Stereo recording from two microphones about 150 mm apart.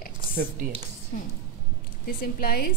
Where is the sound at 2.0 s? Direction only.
75° left (ahead or behind).